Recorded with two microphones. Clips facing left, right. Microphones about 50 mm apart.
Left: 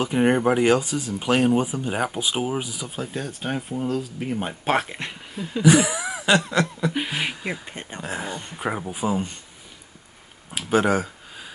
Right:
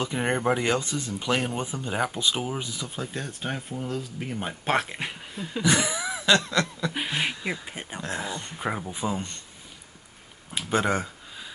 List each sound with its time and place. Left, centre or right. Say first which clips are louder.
0.0 s speech: left 6 dB; centre
3.0 s speech: left 4 dB; centre
5.0 s a sound: left 2 dB; centre
6.9 s speech: left 2 dB; centre
7.6 s speech: left 1 dB; centre
8.0 s speech: left 2 dB; centre
10.6 s speech: left 5 dB; centre